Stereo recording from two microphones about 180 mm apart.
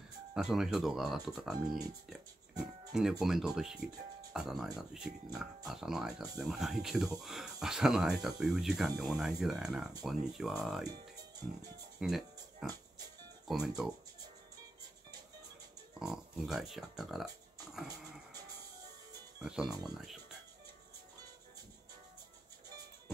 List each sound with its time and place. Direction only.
0.3 s speech: 5° right (ahead or behind)
2.9 s speech: 5° right (ahead or behind)
12.0 s music: 5° right (ahead or behind)
13.5 s speech: 5° right (ahead or behind)
16.0 s speech: centre (ahead or behind)
19.4 s speech: 5° right (ahead or behind)
19.7 s speech: 20° right (ahead or behind)